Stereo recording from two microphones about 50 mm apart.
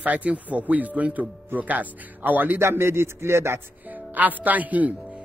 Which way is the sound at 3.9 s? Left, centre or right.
Right.